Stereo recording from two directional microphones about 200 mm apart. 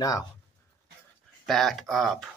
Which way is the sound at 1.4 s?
Centre (ahead or behind).